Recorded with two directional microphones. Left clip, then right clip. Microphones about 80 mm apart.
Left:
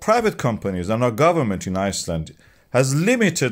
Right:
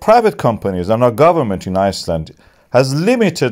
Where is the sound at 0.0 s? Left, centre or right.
Right.